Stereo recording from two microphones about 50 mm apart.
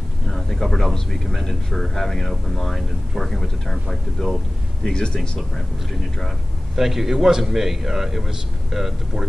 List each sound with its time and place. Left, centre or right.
0.3 s speech: centre
4.8 s speech: centre
6.7 s a man's voice: centre